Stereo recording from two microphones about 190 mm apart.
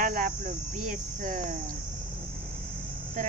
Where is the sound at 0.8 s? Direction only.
45° right (ahead or behind).